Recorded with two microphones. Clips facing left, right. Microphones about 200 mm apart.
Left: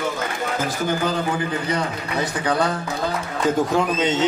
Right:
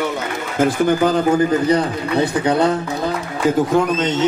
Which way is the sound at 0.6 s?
50° right (ahead or behind).